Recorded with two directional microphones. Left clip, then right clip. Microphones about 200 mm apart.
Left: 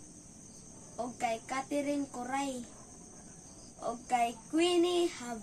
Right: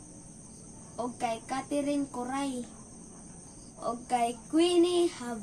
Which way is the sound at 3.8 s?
15° right (ahead or behind).